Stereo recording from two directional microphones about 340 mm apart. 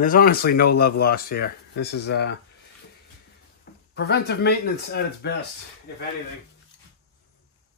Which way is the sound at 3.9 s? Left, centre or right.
Left.